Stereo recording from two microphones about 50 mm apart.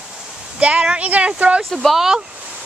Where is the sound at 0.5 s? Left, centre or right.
Right.